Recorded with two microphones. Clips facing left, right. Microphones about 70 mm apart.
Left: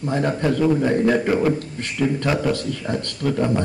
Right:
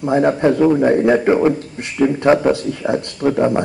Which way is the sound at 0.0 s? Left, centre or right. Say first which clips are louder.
Right 7 dB; right.